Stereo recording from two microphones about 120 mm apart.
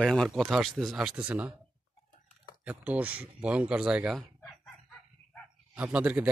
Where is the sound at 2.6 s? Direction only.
15° right (ahead or behind).